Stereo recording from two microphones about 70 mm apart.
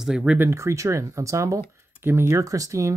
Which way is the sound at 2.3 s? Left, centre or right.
Right.